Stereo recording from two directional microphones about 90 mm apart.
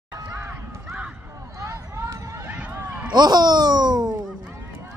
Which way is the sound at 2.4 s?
20° right (ahead or behind).